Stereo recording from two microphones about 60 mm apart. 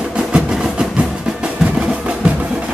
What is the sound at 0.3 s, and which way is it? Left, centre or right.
Music, centre.